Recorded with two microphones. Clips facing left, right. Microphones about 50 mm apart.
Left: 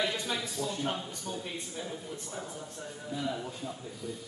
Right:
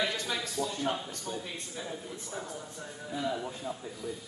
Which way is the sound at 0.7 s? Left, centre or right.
Centre.